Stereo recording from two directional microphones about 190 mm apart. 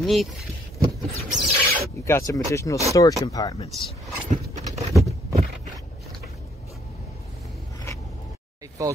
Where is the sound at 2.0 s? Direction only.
15° left (ahead or behind).